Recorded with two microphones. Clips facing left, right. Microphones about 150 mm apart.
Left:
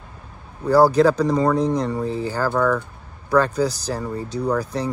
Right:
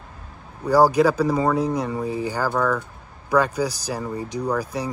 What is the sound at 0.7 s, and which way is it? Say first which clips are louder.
Speech: left 2 dB; 10° right (ahead or behind).